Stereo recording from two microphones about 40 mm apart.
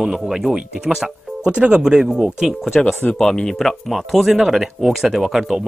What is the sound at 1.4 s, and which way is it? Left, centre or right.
Speech, right.